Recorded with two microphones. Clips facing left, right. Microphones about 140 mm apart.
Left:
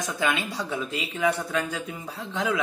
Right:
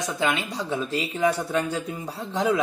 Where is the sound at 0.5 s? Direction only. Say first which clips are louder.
Right 3 dB; 30° right (ahead or behind).